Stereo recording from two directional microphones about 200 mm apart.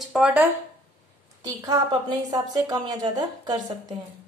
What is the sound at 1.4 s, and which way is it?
A woman's voice, 15° right (ahead or behind).